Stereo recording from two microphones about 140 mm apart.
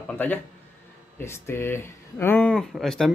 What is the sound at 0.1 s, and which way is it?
Speech, 10° left (ahead or behind).